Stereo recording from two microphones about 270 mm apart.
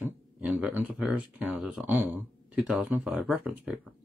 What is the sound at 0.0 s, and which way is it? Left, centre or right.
Speech, centre.